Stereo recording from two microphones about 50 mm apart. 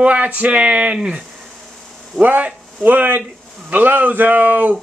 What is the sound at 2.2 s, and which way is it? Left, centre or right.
Speech, right.